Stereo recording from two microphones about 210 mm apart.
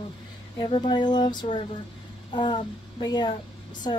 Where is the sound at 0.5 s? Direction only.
25° left (ahead or behind).